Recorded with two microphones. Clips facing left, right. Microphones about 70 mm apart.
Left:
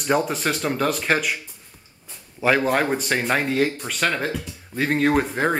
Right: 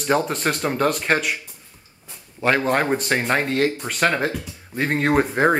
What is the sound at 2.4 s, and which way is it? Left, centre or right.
Speech, centre.